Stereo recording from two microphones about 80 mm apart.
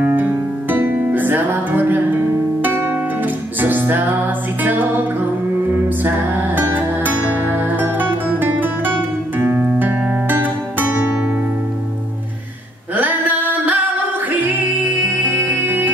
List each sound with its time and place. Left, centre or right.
0.0 s music: right
6.0 s music: right
10.2 s music: right
12.9 s mantra: right
14.3 s music: right